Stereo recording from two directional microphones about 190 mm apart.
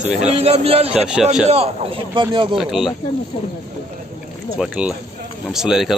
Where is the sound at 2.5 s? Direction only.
Centre (ahead or behind).